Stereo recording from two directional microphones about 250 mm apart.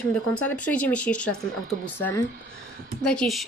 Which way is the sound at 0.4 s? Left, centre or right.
Centre.